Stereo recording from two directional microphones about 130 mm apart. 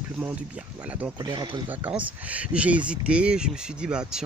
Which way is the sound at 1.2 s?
35° right (ahead or behind).